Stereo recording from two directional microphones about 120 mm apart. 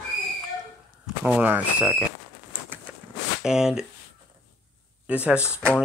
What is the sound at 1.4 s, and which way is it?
Speech, 15° right (ahead or behind).